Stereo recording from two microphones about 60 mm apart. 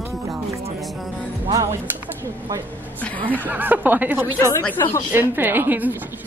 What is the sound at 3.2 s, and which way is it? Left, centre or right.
A woman's voice, right.